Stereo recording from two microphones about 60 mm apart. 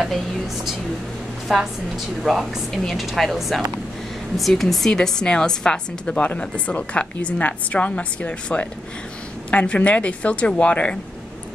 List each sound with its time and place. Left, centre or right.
1.5 s a woman's voice: centre; by 11.0 s left